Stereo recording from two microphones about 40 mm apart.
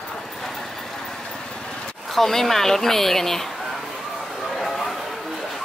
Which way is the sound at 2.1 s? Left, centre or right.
Centre.